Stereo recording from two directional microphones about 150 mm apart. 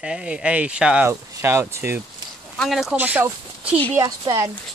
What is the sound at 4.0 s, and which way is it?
Speech, 30° right (ahead or behind).